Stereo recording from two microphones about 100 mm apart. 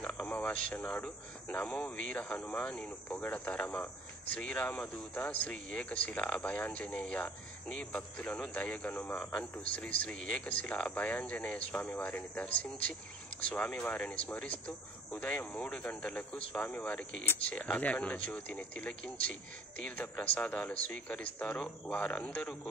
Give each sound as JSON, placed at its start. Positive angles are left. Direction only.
{"t": 0.0, "sound": "speech", "side_deg": 10}
{"t": 13.5, "sound": "speech", "side_deg": 10}